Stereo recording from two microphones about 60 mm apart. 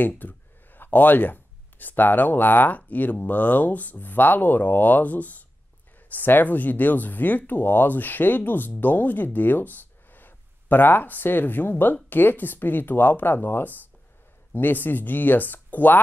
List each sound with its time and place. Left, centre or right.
0.0 s speech: left